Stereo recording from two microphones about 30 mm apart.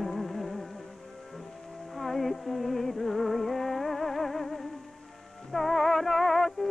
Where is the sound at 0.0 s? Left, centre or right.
Centre.